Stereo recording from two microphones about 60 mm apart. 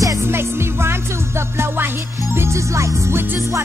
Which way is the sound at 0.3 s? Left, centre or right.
Right.